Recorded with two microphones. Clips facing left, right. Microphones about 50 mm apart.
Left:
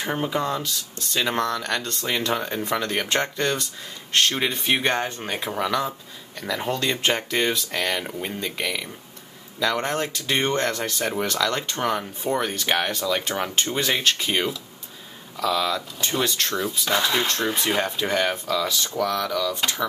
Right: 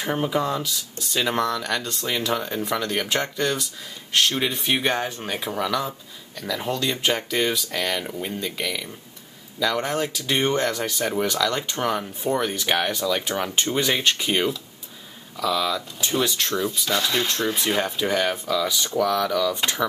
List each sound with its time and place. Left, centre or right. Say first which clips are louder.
0.0 s speech: right 1 dB; centre
2.3 s speech: even; centre
13.6 s speech: right 2 dB; centre
19.5 s speech: right 1 dB; centre